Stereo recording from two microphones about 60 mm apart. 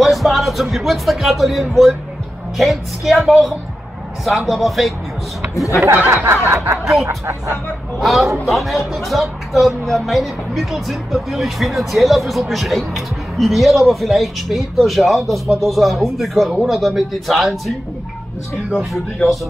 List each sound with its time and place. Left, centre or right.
0.0 s speech: centre
6.0 s snicker: right
6.5 s speech: right
6.8 s speech: centre
7.1 s speech: right
8.0 s speech: centre